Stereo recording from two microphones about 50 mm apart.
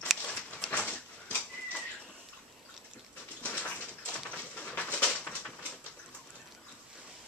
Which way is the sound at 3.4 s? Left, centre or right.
Left.